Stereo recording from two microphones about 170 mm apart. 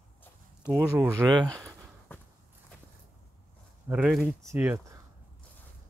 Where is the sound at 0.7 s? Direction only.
10° right (ahead or behind).